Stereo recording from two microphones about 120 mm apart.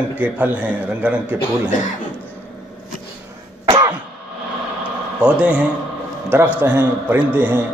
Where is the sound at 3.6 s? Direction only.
35° right (ahead or behind).